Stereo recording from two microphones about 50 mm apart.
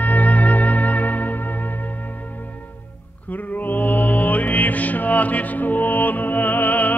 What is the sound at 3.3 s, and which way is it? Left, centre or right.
Music, left.